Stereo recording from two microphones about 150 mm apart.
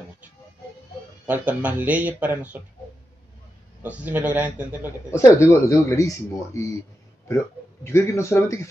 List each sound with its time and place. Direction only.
1.2 s speech: 10° right (ahead or behind)
3.8 s speech: 10° right (ahead or behind)
5.1 s speech: 20° left (ahead or behind)